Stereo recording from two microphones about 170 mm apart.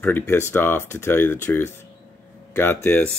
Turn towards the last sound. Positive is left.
turn(degrees=10)  # may be behind; listen again after turning